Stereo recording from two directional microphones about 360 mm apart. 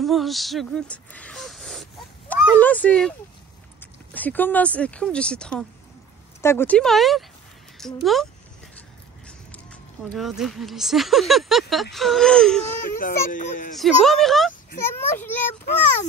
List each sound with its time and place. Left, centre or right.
0.0 s speech: centre
10.0 s speech: centre
12.8 s a child's voice: left
13.7 s speech: centre